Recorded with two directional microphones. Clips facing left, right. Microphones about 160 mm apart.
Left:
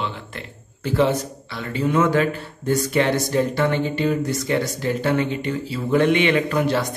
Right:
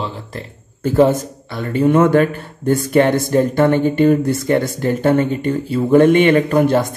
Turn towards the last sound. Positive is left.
turn(degrees=-50)  # may be behind; listen again after turning